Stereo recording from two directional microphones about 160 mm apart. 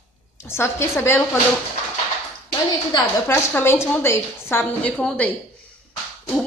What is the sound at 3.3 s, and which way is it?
A woman's voice, 15° left (ahead or behind).